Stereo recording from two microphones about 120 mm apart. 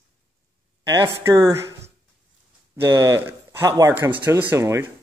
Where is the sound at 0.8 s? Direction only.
25° right (ahead or behind).